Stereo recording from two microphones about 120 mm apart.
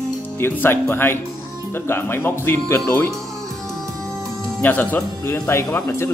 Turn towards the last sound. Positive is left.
turn(degrees=20)  # may be behind; listen again after turning